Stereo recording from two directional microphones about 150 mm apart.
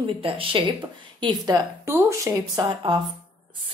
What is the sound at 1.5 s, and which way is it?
A woman's voice, 25° right (ahead or behind).